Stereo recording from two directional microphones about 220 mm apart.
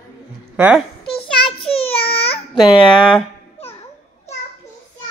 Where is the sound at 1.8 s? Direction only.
25° left (ahead or behind).